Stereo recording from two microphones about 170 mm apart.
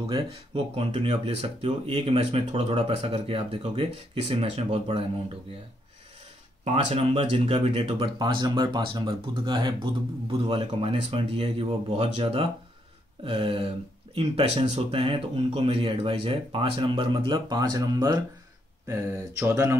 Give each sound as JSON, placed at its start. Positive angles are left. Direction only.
{"t": 0.1, "sound": "speech", "side_deg": -35}
{"t": 6.6, "sound": "speech", "side_deg": -35}
{"t": 8.2, "sound": "speech", "side_deg": -25}
{"t": 18.9, "sound": "a sound", "side_deg": -20}